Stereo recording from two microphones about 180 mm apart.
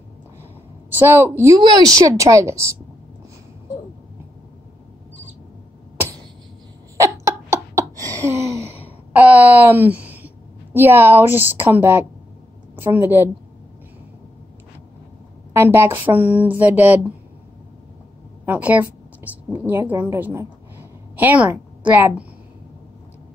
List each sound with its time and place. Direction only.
0.8 s a woman's voice: 10° right (ahead or behind)
7.0 s a sound: 15° right (ahead or behind)
12.8 s a woman's voice: 10° right (ahead or behind)
15.5 s a woman's voice: 15° right (ahead or behind)
18.4 s a woman's voice: 10° right (ahead or behind)